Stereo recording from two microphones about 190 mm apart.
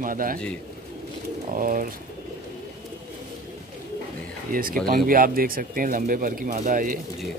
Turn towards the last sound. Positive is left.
turn(degrees=-45)  # may be behind; listen again after turning